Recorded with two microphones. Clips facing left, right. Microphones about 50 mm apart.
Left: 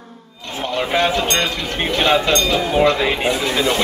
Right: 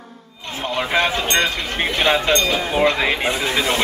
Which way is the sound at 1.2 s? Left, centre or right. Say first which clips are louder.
Even; right.